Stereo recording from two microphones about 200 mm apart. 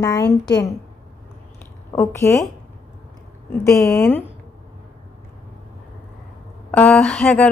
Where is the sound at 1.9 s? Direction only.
15° left (ahead or behind).